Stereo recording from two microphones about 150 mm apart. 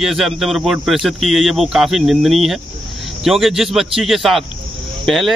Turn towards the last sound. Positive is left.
turn(degrees=0)  # may be behind; listen again after turning